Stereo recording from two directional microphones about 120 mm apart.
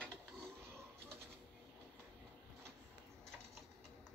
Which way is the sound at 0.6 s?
20° right (ahead or behind).